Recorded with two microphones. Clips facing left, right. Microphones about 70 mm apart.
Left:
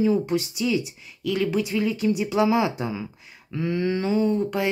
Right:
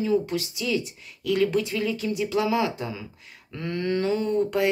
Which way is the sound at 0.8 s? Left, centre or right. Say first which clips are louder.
Left 2 dB; centre.